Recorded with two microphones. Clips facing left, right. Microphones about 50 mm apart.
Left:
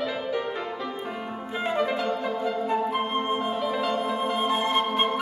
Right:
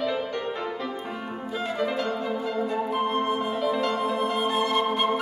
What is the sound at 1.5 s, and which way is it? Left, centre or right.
Music, left.